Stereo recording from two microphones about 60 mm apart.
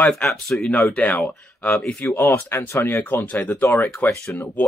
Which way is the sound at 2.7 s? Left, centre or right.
Left.